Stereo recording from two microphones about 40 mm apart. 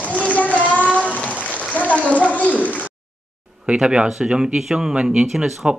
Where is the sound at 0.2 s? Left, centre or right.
Left.